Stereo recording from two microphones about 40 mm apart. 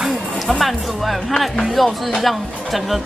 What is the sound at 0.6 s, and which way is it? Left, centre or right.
Speech, centre.